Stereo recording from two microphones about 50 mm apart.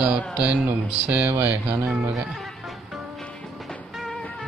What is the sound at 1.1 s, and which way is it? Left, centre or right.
Speech, right.